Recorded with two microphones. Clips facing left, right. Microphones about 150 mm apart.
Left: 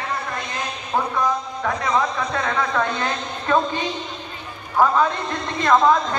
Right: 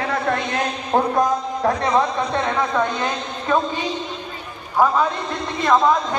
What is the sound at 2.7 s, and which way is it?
Speech, 15° right (ahead or behind).